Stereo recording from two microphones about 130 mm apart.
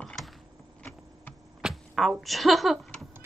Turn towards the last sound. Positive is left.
turn(degrees=0)  # may be behind; listen again after turning